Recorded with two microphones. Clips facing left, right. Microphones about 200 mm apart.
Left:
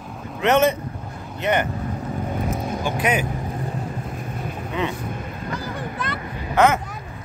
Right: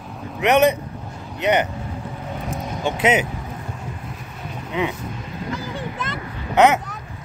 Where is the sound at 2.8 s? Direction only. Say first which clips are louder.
Right 5 dB; 25° right (ahead or behind).